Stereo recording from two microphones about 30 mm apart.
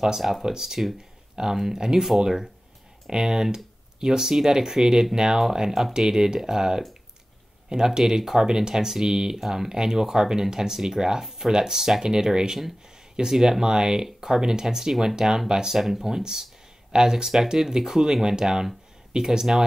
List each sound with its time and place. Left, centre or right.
0.0 s speech: centre
5.4 s speech: centre
5.9 s speech: centre
8.1 s speech: centre
15.8 s speech: centre
16.1 s speech: right